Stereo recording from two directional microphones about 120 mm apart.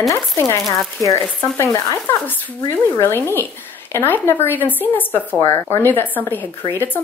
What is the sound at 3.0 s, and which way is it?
Speech, 20° left (ahead or behind).